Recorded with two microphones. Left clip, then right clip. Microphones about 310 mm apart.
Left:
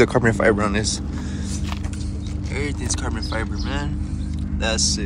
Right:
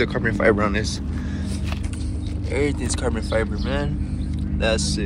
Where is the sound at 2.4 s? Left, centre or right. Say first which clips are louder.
Right 4 dB; centre.